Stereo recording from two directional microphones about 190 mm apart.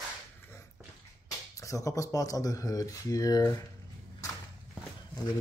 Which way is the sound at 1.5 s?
15° left (ahead or behind).